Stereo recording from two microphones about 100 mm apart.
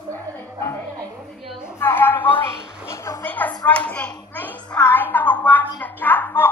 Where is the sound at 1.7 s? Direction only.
20° left (ahead or behind).